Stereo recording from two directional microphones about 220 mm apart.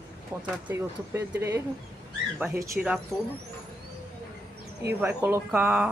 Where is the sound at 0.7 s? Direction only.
10° right (ahead or behind).